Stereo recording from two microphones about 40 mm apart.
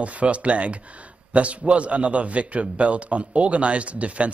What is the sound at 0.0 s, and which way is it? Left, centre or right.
A man's voice, right.